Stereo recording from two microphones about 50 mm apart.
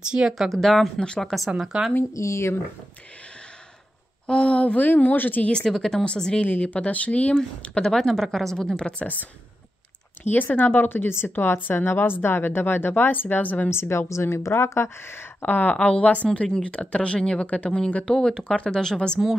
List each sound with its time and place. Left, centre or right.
0.1 s speech: right
0.5 s speech: centre
0.9 s speech: centre
1.7 s speech: centre
2.1 s speech: left
4.3 s speech: left
5.7 s speech: centre
6.4 s speech: left
7.8 s speech: centre
10.5 s a woman's voice: left
13.7 s speech: left
15.4 s speech: left; by 19.1 s centre